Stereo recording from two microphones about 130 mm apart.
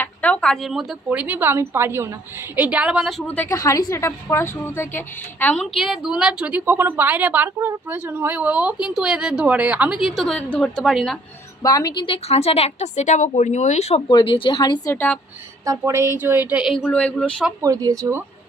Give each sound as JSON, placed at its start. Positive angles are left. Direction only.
{"t": 0.0, "sound": "a sound", "side_deg": 10}
{"t": 1.1, "sound": "a woman's voice", "side_deg": -15}
{"t": 3.4, "sound": "a woman's voice", "side_deg": 25}
{"t": 5.6, "sound": "a woman's voice", "side_deg": -5}
{"t": 11.6, "sound": "a woman's voice", "side_deg": 30}
{"t": 14.0, "sound": "speech", "side_deg": 40}
{"t": 14.9, "sound": "speech", "side_deg": 15}
{"t": 15.6, "sound": "a woman's voice", "side_deg": -25}
{"t": 16.8, "sound": "speech", "side_deg": 5}
{"t": 17.6, "sound": "a woman's voice", "side_deg": -25}